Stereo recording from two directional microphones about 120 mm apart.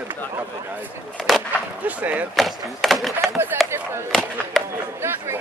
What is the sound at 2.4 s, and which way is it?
Wood, centre (ahead or behind).